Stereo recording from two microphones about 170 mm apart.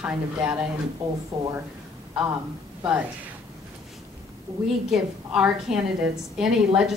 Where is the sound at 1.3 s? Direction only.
25° right (ahead or behind).